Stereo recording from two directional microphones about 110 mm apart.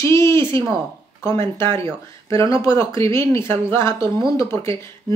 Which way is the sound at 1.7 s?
25° left (ahead or behind).